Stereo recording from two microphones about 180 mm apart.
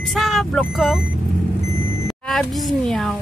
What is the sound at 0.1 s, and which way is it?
Speech, centre (ahead or behind).